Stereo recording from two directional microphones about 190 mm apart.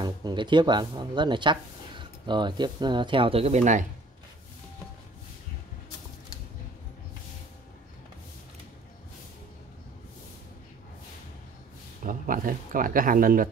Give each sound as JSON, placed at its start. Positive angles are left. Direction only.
{"t": 0.0, "sound": "speech", "side_deg": -20}
{"t": 12.0, "sound": "speech", "side_deg": -45}